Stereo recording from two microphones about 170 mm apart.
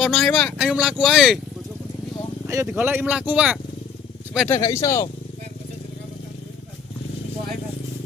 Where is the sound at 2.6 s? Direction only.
10° right (ahead or behind).